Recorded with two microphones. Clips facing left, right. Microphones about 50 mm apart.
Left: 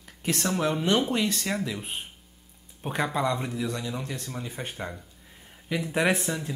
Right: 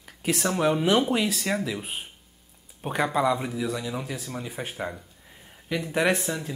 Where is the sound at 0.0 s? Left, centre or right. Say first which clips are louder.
Right 2 dB; centre.